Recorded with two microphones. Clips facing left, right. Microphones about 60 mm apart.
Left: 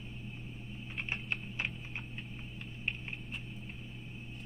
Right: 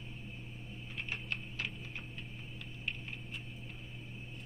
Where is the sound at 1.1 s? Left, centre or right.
Left.